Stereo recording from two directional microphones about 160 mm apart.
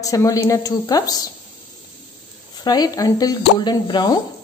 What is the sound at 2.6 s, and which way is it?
Speech, 25° left (ahead or behind).